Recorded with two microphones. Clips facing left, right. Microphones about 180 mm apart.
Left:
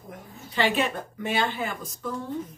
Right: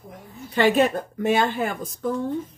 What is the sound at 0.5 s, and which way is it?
A woman's voice, 45° right (ahead or behind).